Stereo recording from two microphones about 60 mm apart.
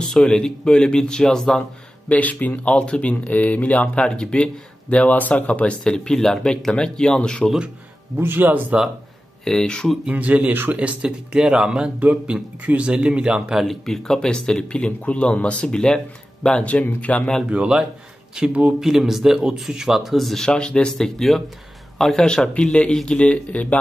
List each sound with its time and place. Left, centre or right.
0.2 s speech: centre
2.0 s speech: left
8.2 s speech: right
9.4 s speech: centre
10.0 s speech: right
12.0 s speech: right
13.6 s speech: centre; by 17.2 s left
17.5 s speech: centre
18.8 s speech: centre; by 23.8 s left